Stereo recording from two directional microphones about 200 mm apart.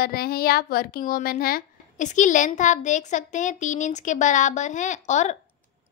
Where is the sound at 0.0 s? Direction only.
50° left (ahead or behind).